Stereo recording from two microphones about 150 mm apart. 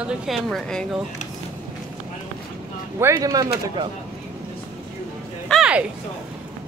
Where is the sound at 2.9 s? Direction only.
20° right (ahead or behind).